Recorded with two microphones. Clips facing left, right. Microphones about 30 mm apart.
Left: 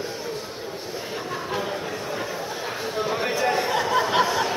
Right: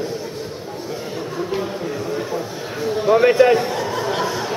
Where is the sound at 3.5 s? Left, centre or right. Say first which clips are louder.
Right 1 dB; centre.